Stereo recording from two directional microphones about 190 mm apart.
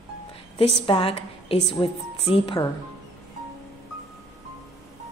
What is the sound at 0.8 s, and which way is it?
A woman's voice, 30° left (ahead or behind).